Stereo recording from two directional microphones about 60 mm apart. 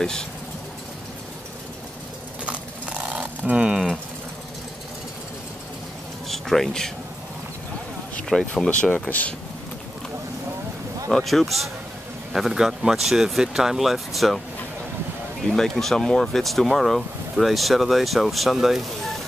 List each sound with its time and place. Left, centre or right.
0.0 s speech: centre
2.4 s a sound: right
6.2 s a sound: centre
8.3 s speech: centre
8.6 s speech: left
11.1 s speech: centre
15.4 s speech: centre